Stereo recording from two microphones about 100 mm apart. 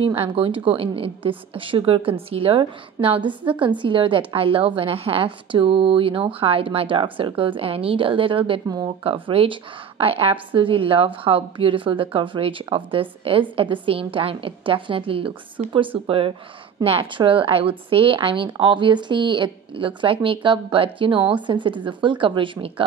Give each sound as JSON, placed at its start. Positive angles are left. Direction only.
{"t": 0.0, "sound": "a woman's voice", "side_deg": -65}
{"t": 2.6, "sound": "a woman's voice", "side_deg": -60}
{"t": 8.6, "sound": "speech", "side_deg": -40}
{"t": 9.0, "sound": "a woman's voice", "side_deg": -65}